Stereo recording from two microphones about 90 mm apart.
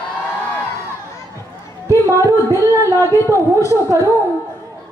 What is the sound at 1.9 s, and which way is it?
Singing, 35° right (ahead or behind).